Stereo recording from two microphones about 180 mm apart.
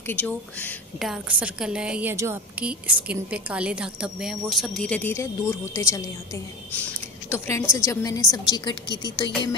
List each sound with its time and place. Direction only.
0.0 s speech: 10° left (ahead or behind)
1.0 s a woman's voice: 5° right (ahead or behind); by 8.9 s 25° left (ahead or behind)